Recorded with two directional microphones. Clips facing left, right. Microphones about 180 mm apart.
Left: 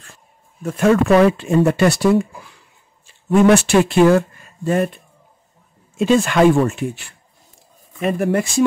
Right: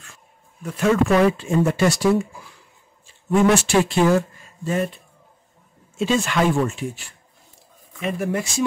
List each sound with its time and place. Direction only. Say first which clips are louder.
0.0 s speech: left 2 dB; 40° left (ahead or behind); by 2.2 s 60° left (ahead or behind)
3.3 s speech: left 5 dB; 60° left (ahead or behind)
5.9 s speech: left 6 dB; 55° left (ahead or behind)
8.0 s speech: left 6 dB; 55° left (ahead or behind)